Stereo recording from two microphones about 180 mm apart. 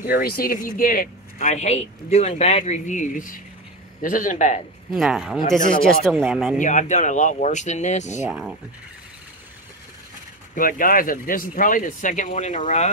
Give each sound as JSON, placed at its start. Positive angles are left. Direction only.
{"t": 0.0, "sound": "speech", "side_deg": 55}
{"t": 4.9, "sound": "speech", "side_deg": 0}
{"t": 6.6, "sound": "speech", "side_deg": 45}
{"t": 8.3, "sound": "speech", "side_deg": -5}
{"t": 10.5, "sound": "speech", "side_deg": 50}